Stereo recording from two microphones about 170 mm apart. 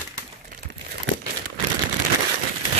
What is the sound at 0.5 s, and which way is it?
Crumpling, 55° right (ahead or behind).